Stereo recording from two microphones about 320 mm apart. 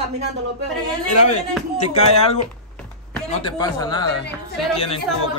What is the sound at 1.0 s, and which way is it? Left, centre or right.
A man's voice, left.